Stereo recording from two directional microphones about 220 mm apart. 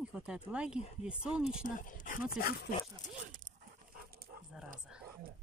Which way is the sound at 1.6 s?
35° left (ahead or behind).